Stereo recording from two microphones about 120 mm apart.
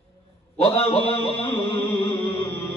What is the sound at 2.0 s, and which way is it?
Music, 50° left (ahead or behind).